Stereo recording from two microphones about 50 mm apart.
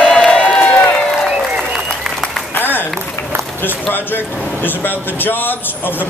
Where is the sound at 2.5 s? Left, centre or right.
Left.